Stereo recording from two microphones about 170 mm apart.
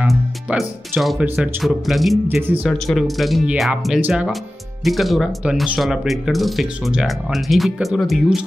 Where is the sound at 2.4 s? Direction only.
10° right (ahead or behind).